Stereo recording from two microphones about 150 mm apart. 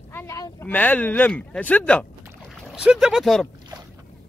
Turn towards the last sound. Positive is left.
turn(degrees=0)  # may be behind; listen again after turning